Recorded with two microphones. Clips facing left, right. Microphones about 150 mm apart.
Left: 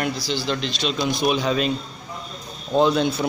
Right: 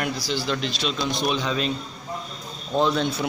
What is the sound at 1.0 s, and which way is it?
Speech, 10° left (ahead or behind).